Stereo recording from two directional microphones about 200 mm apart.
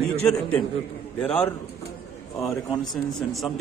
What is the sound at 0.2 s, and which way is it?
Speech, 5° left (ahead or behind).